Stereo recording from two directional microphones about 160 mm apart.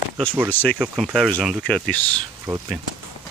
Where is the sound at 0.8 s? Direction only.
5° right (ahead or behind).